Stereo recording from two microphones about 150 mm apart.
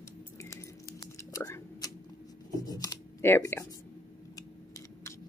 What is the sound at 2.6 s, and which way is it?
Speech, 25° left (ahead or behind).